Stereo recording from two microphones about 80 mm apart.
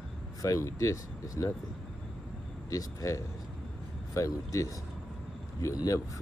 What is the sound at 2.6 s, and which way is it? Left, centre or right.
Speech, left.